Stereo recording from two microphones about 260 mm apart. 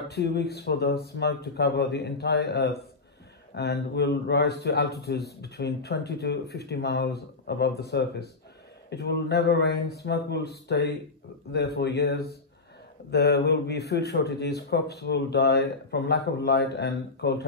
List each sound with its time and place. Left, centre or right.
0.1 s a man's voice: left
8.9 s a man's voice: left